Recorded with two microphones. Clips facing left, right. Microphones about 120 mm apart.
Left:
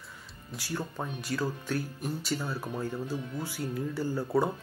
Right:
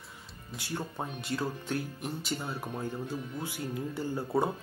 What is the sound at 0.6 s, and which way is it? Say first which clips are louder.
Speech: left 1 dB; 20° right (ahead or behind).